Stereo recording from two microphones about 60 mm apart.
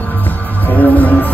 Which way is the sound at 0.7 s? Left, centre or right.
Left.